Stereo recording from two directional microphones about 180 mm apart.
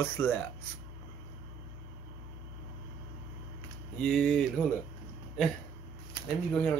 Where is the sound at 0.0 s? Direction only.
10° left (ahead or behind).